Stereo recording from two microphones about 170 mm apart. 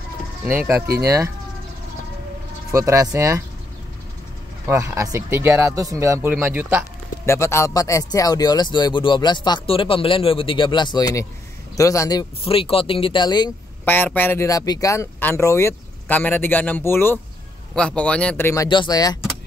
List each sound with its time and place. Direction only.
0.9 s speech: 20° right (ahead or behind)
2.7 s speech: 20° right (ahead or behind)
4.6 s speech: 15° right (ahead or behind)
7.2 s speech: 15° left (ahead or behind)
13.8 s speech: 10° left (ahead or behind)
18.7 s speech: 25° left (ahead or behind)